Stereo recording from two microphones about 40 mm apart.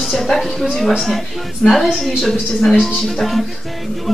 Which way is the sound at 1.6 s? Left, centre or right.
Centre.